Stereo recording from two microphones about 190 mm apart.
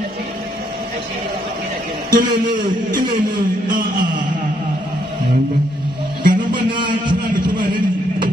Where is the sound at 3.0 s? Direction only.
55° right (ahead or behind).